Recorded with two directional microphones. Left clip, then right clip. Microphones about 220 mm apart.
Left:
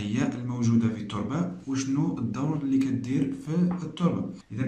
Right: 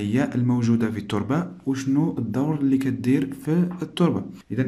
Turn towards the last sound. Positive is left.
turn(degrees=-40)  # may be behind; listen again after turning